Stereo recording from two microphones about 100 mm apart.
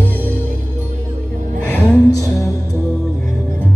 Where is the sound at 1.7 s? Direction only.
20° left (ahead or behind).